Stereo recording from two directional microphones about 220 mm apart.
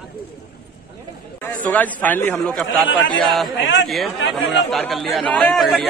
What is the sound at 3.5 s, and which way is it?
Speech, 55° left (ahead or behind).